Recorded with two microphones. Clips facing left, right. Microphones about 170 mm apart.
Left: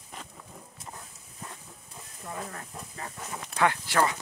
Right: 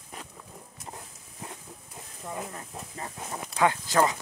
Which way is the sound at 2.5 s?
20° right (ahead or behind).